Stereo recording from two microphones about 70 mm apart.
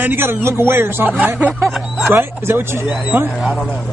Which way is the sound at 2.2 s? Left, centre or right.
Right.